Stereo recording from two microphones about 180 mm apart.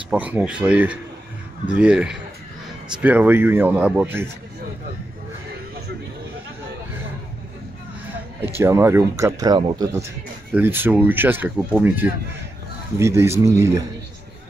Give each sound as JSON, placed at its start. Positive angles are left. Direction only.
{"t": 0.1, "sound": "a man's voice", "side_deg": -10}
{"t": 8.5, "sound": "speech", "side_deg": -15}
{"t": 10.5, "sound": "speech", "side_deg": -10}